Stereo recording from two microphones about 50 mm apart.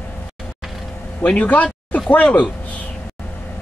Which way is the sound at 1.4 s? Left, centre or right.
Left.